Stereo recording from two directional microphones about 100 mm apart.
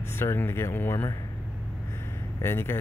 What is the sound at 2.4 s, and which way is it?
Speech, 25° left (ahead or behind).